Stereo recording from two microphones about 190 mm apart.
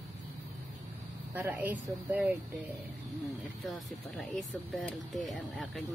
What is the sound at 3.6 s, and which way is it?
Speech, centre (ahead or behind).